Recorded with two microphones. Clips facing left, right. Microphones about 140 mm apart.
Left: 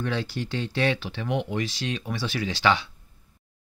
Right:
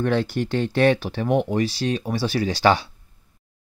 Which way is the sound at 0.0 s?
50° right (ahead or behind).